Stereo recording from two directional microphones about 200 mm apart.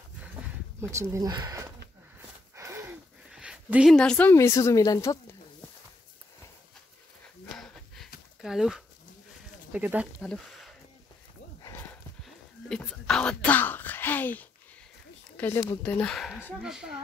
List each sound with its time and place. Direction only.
0.7 s speech: 15° right (ahead or behind)
2.5 s gasp: 15° right (ahead or behind)
3.3 s a woman's voice: 5° right (ahead or behind); by 5.2 s 15° left (ahead or behind)
7.5 s a sound: centre (ahead or behind)
8.4 s speech: centre (ahead or behind)
11.6 s horse: 10° left (ahead or behind)
12.6 s speech: 5° left (ahead or behind)